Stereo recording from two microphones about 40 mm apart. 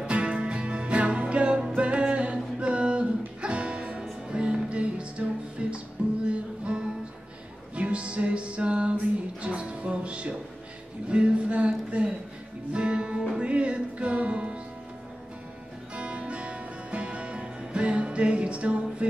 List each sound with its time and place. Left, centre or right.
0.0 s music: right
11.1 s a sound: right
12.7 s music: right
15.9 s music: right